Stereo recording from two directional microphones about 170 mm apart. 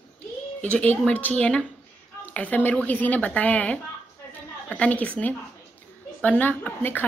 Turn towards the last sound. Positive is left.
turn(degrees=10)  # may be behind; listen again after turning